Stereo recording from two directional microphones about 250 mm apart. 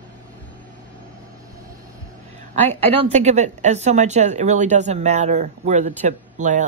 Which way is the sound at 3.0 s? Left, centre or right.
Right.